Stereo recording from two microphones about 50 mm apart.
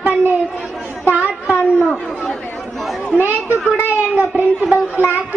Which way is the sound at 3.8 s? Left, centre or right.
Right.